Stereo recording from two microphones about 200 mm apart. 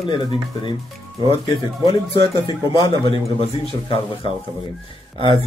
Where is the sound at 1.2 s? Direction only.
25° left (ahead or behind).